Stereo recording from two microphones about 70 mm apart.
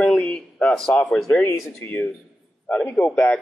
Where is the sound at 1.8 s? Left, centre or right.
Left.